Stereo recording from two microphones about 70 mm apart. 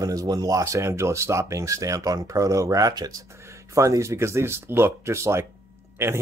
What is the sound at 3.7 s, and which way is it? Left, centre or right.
Speech, right.